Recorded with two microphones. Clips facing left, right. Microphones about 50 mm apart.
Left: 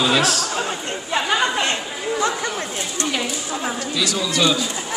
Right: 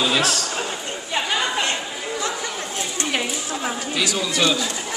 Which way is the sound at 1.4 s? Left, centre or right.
Left.